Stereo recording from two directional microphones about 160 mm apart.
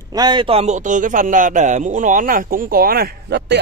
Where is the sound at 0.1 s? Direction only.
25° right (ahead or behind).